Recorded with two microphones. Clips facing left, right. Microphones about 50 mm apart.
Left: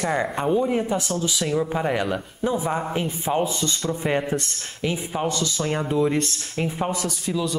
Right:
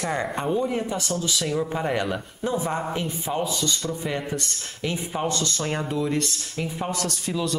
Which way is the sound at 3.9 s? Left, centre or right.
Left.